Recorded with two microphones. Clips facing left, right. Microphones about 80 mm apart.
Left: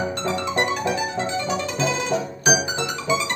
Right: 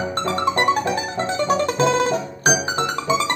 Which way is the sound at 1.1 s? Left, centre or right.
Right.